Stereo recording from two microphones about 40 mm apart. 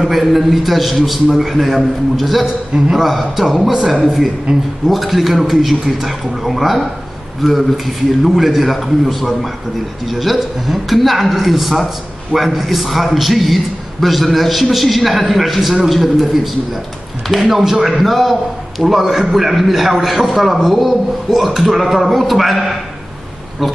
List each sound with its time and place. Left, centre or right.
0.0 s a man's voice: centre
2.4 s a man's voice: centre
3.0 s a man's voice: centre
4.5 s speech: right
4.8 s a man's voice: centre
17.3 s a man's voice: centre